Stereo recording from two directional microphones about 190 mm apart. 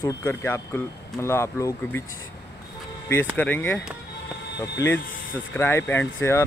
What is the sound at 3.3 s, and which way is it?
Speech, 10° left (ahead or behind).